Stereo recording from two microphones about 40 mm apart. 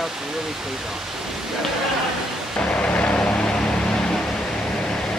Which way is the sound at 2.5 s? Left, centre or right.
Left.